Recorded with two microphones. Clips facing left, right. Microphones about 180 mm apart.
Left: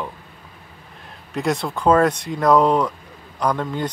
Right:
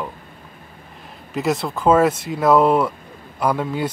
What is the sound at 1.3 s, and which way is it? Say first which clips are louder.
Speech: right 1 dB; centre (ahead or behind).